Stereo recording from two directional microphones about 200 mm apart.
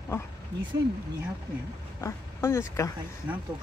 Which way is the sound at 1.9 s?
15° left (ahead or behind).